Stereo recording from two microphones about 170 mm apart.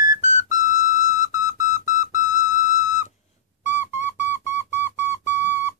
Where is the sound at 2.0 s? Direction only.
50° left (ahead or behind).